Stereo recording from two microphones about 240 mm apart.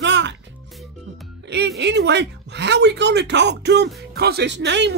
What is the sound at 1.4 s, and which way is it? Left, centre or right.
Speech, right.